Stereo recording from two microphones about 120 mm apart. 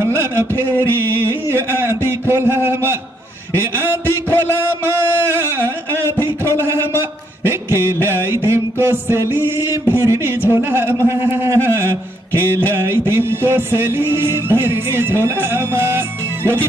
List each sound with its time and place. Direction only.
0.0 s music: 20° right (ahead or behind)
3.5 s a sound: 20° right (ahead or behind)
7.0 s mantra: 20° right (ahead or behind)